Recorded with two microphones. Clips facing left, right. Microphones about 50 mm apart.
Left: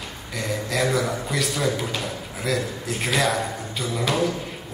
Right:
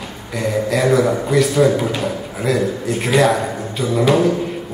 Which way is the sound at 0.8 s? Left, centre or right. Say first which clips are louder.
Right 9 dB; centre.